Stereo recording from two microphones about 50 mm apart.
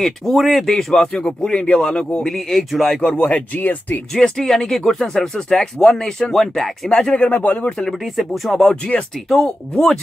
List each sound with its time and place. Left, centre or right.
0.0 s speech: centre; by 2.0 s left
2.2 s speech: centre; by 4.0 s left
4.1 s speech: centre
7.2 s speech: left
7.7 s speech: centre